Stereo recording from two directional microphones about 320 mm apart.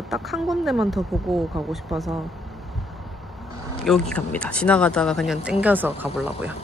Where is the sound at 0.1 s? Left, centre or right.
Centre.